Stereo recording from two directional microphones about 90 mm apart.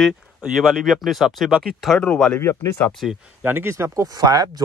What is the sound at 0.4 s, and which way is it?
Speech, 5° right (ahead or behind).